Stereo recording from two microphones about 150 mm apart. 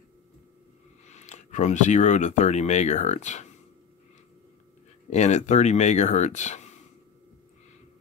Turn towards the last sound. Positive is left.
turn(degrees=50)  # may be behind; listen again after turning